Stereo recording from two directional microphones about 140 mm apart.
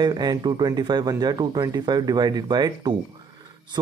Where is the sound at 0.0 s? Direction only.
30° right (ahead or behind).